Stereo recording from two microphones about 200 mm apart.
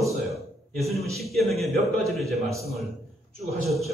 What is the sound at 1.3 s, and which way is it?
A man's voice, centre (ahead or behind).